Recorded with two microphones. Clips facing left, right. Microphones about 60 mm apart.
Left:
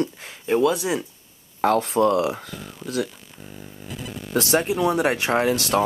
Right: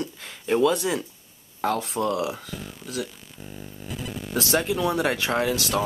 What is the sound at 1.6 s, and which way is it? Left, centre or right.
Speech, left.